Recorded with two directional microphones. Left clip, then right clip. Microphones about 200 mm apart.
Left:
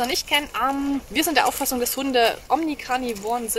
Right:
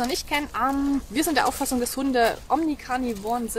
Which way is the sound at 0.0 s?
Centre (ahead or behind).